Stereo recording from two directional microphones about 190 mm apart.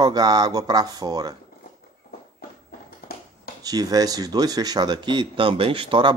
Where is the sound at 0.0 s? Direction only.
20° right (ahead or behind).